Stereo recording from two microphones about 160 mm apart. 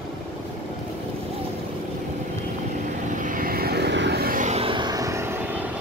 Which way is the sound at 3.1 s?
55° right (ahead or behind).